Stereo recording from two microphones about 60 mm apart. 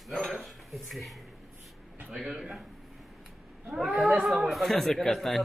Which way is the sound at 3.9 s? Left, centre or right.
Right.